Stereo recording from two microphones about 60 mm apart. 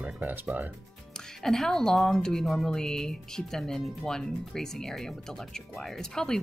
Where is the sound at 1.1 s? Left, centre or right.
Centre.